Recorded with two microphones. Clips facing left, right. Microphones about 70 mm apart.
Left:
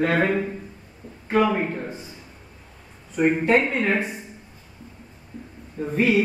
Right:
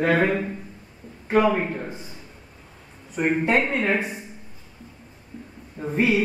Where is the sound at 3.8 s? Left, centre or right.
Centre.